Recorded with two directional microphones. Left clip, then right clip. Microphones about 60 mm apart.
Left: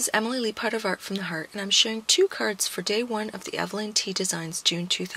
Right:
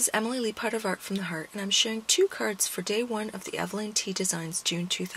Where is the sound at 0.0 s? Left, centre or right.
Left.